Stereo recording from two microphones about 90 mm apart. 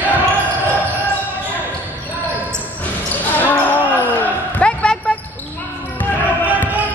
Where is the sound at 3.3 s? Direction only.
20° left (ahead or behind).